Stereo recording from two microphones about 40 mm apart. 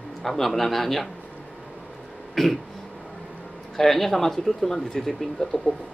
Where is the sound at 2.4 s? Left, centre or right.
Centre.